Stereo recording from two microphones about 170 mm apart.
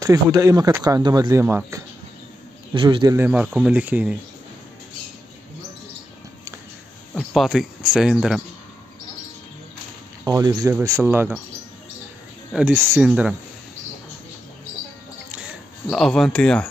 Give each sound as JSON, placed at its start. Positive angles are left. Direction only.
{"t": 0.0, "sound": "speech", "side_deg": -20}
{"t": 2.7, "sound": "speech", "side_deg": -30}
{"t": 3.2, "sound": "speech", "side_deg": -10}
{"t": 7.2, "sound": "speech", "side_deg": 0}
{"t": 10.2, "sound": "speech", "side_deg": -20}
{"t": 12.5, "sound": "speech", "side_deg": -5}
{"t": 15.3, "sound": "a sound", "side_deg": 0}